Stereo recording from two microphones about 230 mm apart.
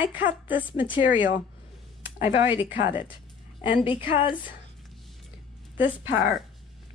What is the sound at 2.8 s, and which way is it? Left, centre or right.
Speech, centre.